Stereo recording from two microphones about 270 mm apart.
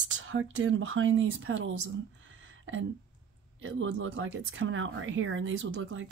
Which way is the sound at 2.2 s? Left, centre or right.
Right.